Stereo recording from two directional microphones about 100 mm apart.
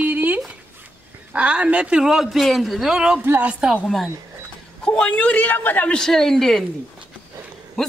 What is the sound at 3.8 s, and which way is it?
A man's voice, 5° left (ahead or behind).